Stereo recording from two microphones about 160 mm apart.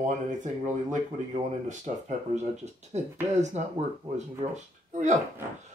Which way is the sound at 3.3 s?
45° right (ahead or behind).